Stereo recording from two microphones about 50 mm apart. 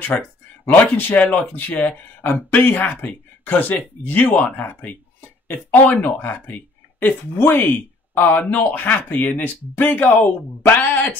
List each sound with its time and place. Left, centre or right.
0.1 s speech: left
0.7 s speech: left